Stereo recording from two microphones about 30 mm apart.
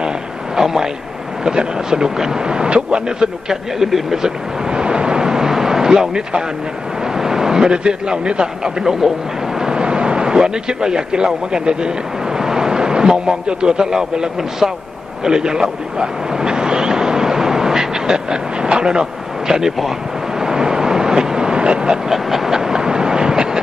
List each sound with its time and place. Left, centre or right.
0.6 s a sound: centre
1.4 s speech: right
3.8 s speech: centre
4.6 s vehicle: right
7.2 s a sound: centre
7.7 s a man's voice: right
8.6 s speech: centre
15.2 s a sound: right
20.3 s vehicle: right
22.1 s train: centre